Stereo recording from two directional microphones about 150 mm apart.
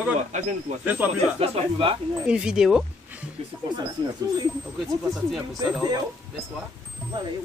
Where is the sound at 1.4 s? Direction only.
40° right (ahead or behind).